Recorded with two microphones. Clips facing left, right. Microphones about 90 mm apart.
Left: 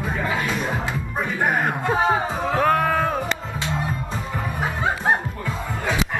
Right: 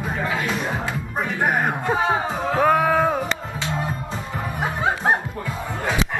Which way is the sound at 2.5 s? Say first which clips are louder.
Right 2 dB; 10° right (ahead or behind).